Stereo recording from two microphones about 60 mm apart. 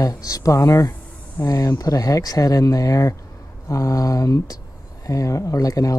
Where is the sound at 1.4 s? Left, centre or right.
Left.